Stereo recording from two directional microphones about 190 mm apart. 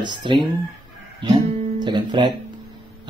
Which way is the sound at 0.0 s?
25° right (ahead or behind).